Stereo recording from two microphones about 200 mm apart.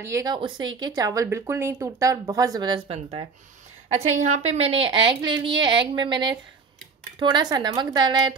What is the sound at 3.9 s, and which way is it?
A woman's voice, 35° right (ahead or behind).